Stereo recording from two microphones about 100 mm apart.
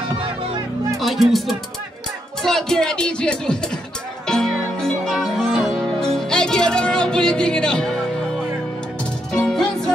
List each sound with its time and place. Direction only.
0.9 s speech: centre (ahead or behind)
2.4 s music: 5° left (ahead or behind)